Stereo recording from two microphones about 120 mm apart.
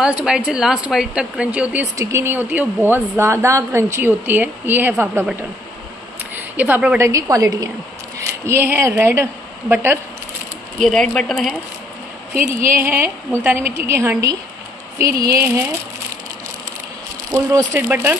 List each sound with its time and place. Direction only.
0.0 s speech: 5° right (ahead or behind)
2.0 s a woman's voice: 25° right (ahead or behind)
6.3 s speech: 15° right (ahead or behind)
7.0 s a woman's voice: 25° right (ahead or behind)
10.8 s speech: 5° left (ahead or behind)
12.7 s a woman's voice: 20° right (ahead or behind)
17.3 s a woman's voice: 30° right (ahead or behind)
17.7 s speech: 15° right (ahead or behind)